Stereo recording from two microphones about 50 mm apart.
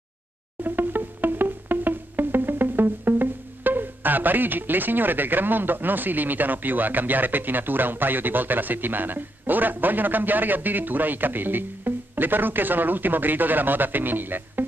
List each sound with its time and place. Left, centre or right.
0.7 s music: right